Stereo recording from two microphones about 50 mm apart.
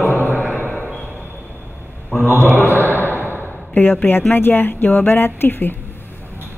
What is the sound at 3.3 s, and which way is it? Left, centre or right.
Speech, left.